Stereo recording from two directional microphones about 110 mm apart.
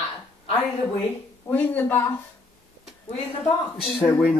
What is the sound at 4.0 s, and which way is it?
Speech, 25° left (ahead or behind).